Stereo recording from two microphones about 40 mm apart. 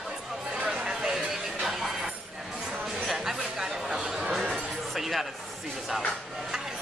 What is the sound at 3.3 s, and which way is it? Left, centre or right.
Chatter, centre.